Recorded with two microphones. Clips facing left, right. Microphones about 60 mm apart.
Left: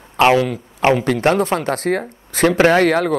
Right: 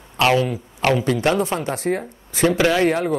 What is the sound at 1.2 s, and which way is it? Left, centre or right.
Speech, left.